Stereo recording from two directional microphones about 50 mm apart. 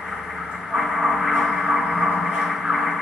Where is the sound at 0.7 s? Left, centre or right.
Centre.